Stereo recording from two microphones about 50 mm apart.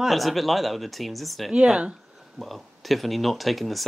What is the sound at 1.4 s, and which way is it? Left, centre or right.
Speech, centre.